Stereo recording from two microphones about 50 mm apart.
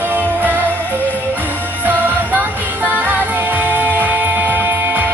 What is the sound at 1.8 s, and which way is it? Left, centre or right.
Music, right.